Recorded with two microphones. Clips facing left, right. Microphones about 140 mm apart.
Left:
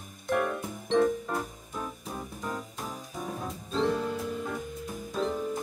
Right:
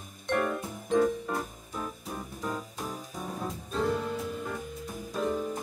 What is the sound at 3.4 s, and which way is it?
Music, 5° right (ahead or behind).